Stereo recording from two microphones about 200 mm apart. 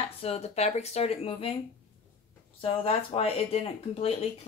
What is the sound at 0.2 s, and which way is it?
Speech, 30° left (ahead or behind).